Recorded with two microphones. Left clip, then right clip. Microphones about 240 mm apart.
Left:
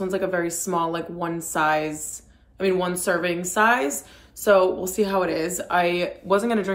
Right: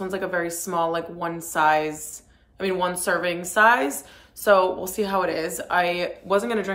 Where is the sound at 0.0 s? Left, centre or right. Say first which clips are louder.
Left 2 dB; centre.